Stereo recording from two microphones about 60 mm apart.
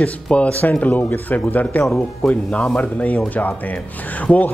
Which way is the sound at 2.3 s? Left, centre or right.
Centre.